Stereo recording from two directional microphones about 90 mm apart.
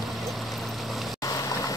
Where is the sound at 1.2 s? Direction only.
40° left (ahead or behind).